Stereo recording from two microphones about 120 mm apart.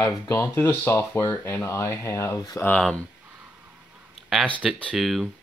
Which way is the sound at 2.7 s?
5° left (ahead or behind).